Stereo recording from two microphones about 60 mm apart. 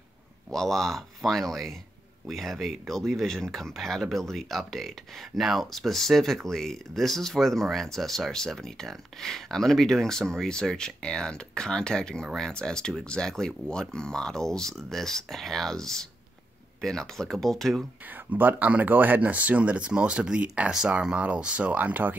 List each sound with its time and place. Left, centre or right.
0.5 s speech: centre
18.1 s speech: right